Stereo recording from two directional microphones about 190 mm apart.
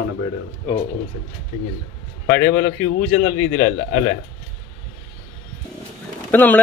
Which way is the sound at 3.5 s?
50° left (ahead or behind).